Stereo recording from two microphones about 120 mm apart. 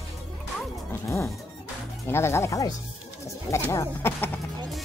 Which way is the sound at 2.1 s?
20° left (ahead or behind).